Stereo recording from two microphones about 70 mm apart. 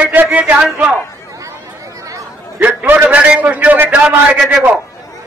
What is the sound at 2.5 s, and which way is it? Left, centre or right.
A man's voice, right.